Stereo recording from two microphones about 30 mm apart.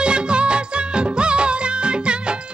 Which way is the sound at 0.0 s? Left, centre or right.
Right.